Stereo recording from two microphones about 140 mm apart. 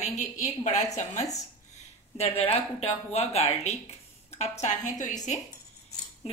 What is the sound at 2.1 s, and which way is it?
A woman's voice, 45° left (ahead or behind).